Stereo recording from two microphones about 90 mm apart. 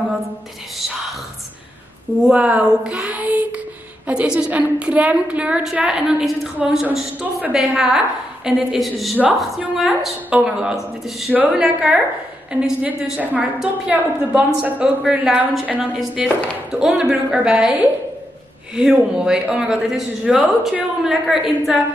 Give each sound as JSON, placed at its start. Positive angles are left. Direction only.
{"t": 2.2, "sound": "a woman's voice", "side_deg": -10}
{"t": 13.2, "sound": "speech", "side_deg": -15}